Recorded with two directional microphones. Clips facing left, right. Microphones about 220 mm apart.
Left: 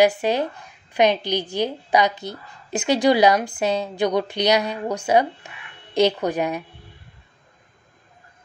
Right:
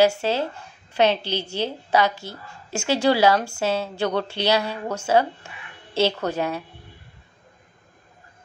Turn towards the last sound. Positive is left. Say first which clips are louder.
# left 2 dB
turn(degrees=15)  # may be behind; listen again after turning